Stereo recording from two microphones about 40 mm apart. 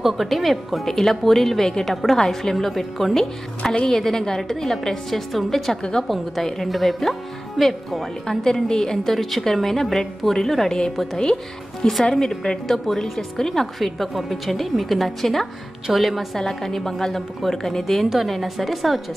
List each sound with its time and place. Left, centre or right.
0.0 s a woman's voice: centre
1.7 s a woman's voice: centre
2.5 s a woman's voice: centre
5.8 s a woman's voice: centre
6.0 s a woman's voice: centre
8.3 s a woman's voice: centre
16.3 s a woman's voice: centre